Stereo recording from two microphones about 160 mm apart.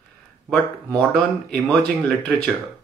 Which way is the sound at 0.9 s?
Centre (ahead or behind).